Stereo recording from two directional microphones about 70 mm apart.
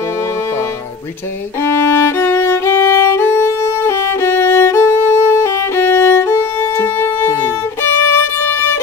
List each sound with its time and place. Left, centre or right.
1.6 s violin: left
8.5 s music: left